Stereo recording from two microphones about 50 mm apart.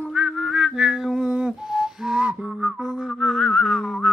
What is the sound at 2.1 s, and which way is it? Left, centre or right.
Whistling, right.